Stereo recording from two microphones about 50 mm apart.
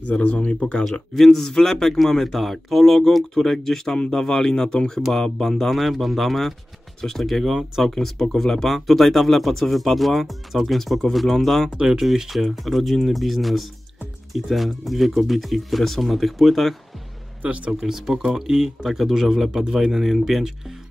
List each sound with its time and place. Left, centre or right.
0.0 s speech: left
1.1 s speech: centre
7.4 s speech: centre
7.9 s speech: centre
11.7 s speech: centre
17.4 s speech: right
17.7 s speech: centre